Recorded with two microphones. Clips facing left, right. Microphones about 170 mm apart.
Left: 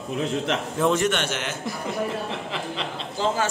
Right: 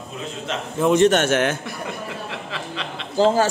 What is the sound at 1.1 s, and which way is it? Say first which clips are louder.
Speech: right 9 dB; 50° right (ahead or behind).